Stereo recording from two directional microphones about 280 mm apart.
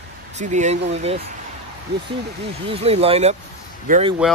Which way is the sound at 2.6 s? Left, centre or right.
Right.